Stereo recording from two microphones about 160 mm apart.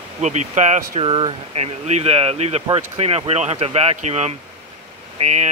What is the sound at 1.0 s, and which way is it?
Speech, 35° right (ahead or behind).